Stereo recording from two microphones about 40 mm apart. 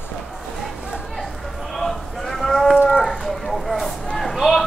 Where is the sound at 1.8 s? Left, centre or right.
Centre.